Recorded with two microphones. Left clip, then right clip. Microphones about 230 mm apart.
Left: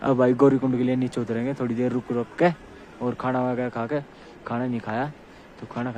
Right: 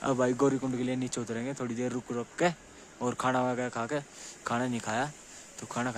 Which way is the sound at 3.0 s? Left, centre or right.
Right.